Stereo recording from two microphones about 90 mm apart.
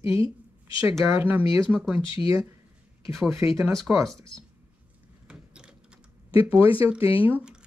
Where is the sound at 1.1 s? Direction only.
25° right (ahead or behind).